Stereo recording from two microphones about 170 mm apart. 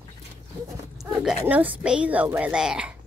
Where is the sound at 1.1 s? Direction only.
5° right (ahead or behind).